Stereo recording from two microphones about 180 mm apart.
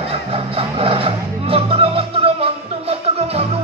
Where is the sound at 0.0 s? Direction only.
30° right (ahead or behind).